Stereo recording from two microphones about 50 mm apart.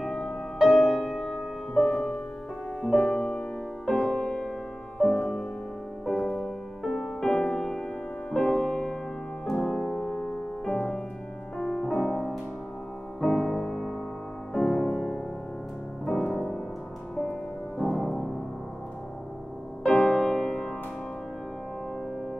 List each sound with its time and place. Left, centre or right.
0.1 s music: centre
1.2 s music: centre
6.8 s music: centre
13.4 s music: centre
16.1 s music: centre
16.3 s music: centre
17.2 s music: left
17.8 s music: centre
19.9 s music: centre